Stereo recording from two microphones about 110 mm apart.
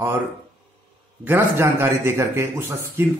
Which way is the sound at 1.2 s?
20° right (ahead or behind).